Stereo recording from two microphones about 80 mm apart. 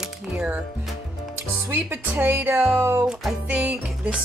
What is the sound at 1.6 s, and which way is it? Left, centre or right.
A woman's voice, right.